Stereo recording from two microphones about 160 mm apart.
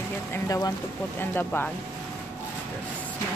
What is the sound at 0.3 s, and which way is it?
A woman's voice, 20° left (ahead or behind).